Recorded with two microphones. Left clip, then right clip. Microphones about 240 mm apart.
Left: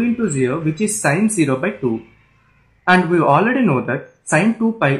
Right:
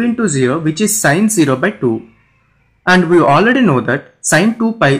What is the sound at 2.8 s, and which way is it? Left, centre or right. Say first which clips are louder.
Speech: right 4 dB; right.